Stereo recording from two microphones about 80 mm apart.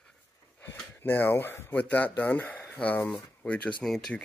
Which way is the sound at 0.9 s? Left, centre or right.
Left.